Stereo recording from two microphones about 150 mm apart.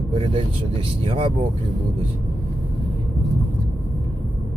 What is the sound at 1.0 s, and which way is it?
Speech, 40° right (ahead or behind).